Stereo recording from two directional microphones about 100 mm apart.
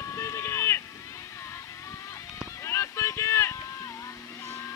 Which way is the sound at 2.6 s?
25° left (ahead or behind).